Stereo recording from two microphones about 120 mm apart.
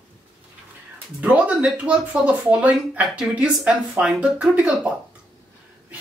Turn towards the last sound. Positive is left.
turn(degrees=-10)  # may be behind; listen again after turning